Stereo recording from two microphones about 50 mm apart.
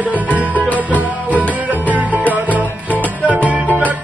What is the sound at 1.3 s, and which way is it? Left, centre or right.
Music, right.